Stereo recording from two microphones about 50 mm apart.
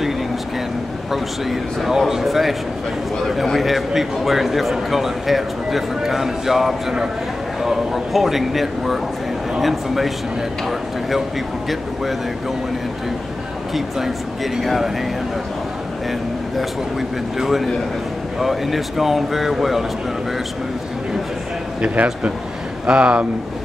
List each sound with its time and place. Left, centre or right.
1.1 s a man's voice: centre
3.5 s a man's voice: centre
13.7 s a man's voice: centre
17.4 s a man's voice: centre
21.8 s speech: right